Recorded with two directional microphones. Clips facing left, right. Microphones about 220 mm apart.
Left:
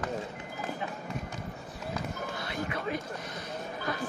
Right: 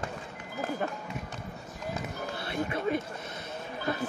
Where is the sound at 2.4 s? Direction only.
25° right (ahead or behind).